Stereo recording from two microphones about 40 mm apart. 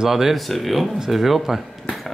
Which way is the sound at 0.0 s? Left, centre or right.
Centre.